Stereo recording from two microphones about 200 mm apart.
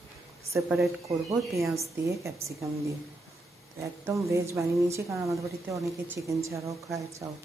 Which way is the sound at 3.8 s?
15° right (ahead or behind).